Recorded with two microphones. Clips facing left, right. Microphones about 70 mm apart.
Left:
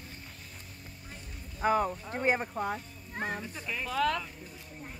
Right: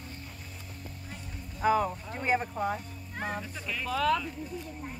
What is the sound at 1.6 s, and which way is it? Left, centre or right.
Speech, centre.